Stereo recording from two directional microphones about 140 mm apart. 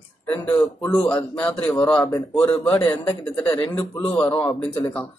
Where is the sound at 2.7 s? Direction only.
30° left (ahead or behind).